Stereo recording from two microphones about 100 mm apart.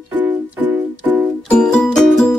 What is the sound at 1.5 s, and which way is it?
Music, 5° left (ahead or behind).